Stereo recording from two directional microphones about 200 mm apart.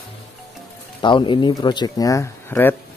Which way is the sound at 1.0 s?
25° left (ahead or behind).